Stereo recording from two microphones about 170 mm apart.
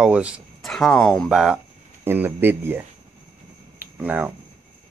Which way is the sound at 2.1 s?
15° right (ahead or behind).